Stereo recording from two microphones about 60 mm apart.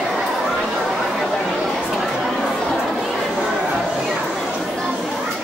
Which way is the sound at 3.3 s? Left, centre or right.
Centre.